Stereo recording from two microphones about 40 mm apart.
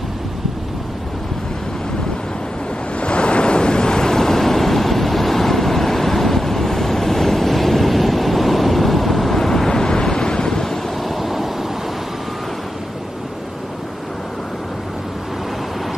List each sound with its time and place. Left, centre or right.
3.0 s waves: left
11.1 s vehicle: centre